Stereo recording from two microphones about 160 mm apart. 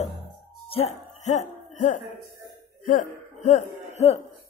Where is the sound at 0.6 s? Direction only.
40° left (ahead or behind).